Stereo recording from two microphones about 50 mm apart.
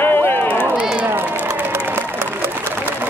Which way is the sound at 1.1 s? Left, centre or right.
Right.